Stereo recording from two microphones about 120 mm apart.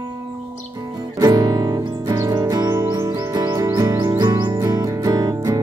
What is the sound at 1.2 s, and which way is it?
Music, 35° right (ahead or behind).